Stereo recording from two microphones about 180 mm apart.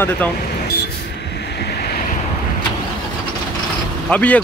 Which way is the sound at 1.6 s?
60° left (ahead or behind).